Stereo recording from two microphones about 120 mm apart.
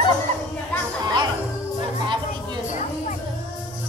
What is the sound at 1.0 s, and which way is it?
Music, 40° right (ahead or behind).